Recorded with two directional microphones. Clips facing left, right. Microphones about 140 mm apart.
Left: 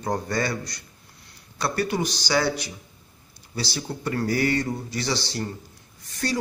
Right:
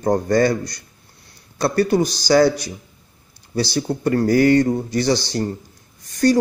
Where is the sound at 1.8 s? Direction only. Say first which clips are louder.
Right 9 dB; 40° right (ahead or behind).